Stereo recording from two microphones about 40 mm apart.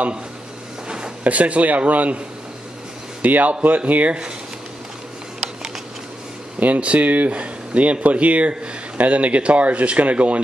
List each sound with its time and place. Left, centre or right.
0.8 s a sound: right
1.2 s speech: right
6.6 s speech: right